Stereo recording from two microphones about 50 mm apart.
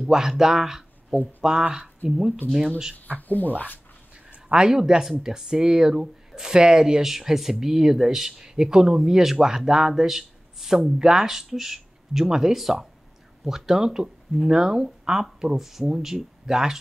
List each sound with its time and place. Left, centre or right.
0.1 s speech: centre
1.6 s speech: centre
3.2 s speech: left
4.5 s speech: centre